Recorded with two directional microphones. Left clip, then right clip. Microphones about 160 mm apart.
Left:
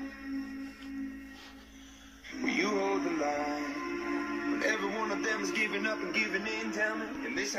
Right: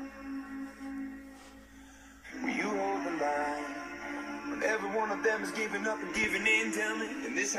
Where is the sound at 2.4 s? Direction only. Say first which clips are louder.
Left 2 dB; 20° left (ahead or behind).